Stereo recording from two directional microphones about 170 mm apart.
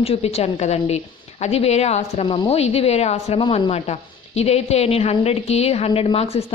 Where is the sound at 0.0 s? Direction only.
35° left (ahead or behind).